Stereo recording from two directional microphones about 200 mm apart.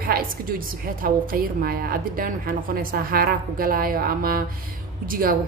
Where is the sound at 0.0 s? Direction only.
45° right (ahead or behind).